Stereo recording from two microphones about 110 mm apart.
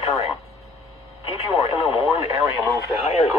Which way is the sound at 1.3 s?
65° left (ahead or behind).